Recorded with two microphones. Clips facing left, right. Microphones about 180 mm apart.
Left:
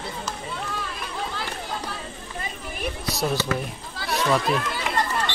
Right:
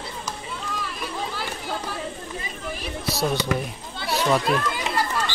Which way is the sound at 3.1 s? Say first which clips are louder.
Right 2 dB; centre (ahead or behind).